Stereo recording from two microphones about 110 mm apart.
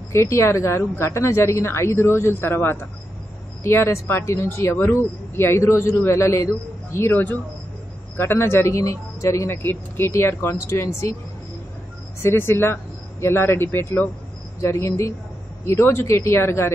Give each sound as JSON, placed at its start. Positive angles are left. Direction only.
{"t": 0.1, "sound": "speech", "side_deg": 25}
{"t": 12.2, "sound": "speech", "side_deg": 20}